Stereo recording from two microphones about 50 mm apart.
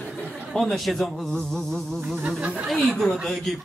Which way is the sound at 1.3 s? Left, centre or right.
Centre.